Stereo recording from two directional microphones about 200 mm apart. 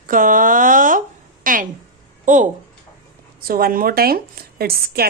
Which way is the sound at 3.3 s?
45° right (ahead or behind).